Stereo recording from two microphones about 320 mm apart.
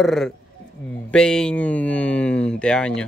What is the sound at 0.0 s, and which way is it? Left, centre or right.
A man's voice, centre.